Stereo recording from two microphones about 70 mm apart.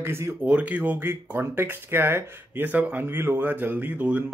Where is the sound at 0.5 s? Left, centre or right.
Centre; by 2.6 s right.